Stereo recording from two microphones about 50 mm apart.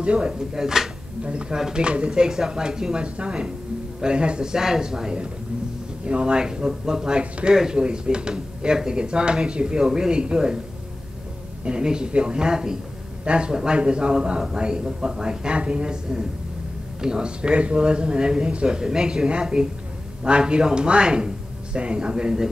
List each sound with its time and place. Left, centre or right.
0.0 s speech: right
1.2 s speech: right
11.6 s speech: centre